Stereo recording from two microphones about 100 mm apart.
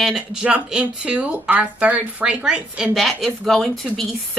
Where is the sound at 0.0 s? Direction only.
5° right (ahead or behind).